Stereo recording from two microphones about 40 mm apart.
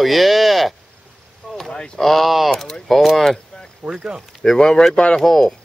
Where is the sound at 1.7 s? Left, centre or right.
Centre.